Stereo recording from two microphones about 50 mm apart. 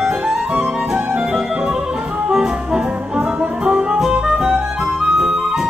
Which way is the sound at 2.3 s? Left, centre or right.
Centre.